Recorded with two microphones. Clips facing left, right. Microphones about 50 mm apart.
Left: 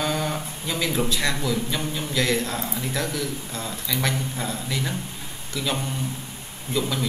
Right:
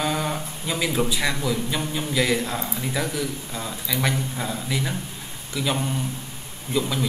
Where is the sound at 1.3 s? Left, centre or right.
Centre.